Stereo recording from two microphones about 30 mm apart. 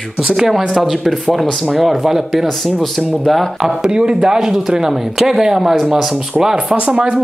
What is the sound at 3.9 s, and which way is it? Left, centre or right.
Speech, right.